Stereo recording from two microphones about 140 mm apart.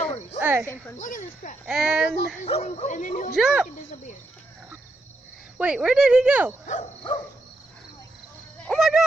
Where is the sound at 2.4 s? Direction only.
55° left (ahead or behind).